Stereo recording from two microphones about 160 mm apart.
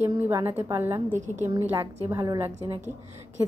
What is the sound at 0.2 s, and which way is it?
A woman's voice, 15° right (ahead or behind).